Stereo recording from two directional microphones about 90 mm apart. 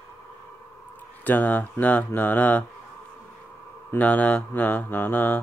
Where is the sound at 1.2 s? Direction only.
20° left (ahead or behind).